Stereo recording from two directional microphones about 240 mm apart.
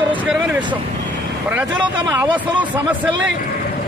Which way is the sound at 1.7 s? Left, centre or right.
Centre.